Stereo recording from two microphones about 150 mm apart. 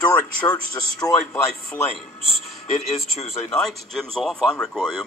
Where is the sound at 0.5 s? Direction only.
25° left (ahead or behind).